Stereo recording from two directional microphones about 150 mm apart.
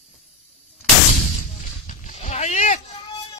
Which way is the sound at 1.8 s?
50° left (ahead or behind).